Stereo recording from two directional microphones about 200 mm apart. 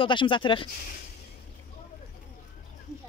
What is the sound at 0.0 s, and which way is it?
Speech, 25° left (ahead or behind).